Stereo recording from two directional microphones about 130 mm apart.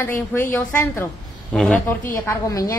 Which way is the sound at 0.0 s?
15° left (ahead or behind).